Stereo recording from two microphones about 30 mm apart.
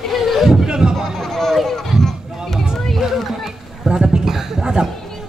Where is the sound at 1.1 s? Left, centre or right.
Centre.